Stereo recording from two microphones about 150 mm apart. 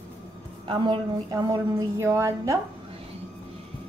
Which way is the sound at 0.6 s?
30° right (ahead or behind).